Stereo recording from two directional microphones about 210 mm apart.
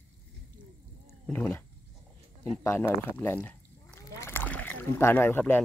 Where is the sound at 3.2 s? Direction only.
10° left (ahead or behind).